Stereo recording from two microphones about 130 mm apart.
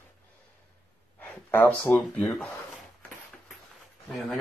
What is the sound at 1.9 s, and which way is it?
Speech, 5° left (ahead or behind).